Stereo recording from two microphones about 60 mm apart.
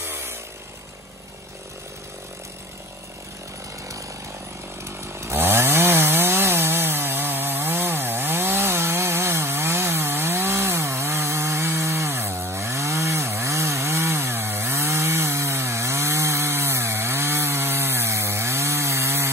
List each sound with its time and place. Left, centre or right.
0.0 s chainsaw: right
5.2 s chainsaw: right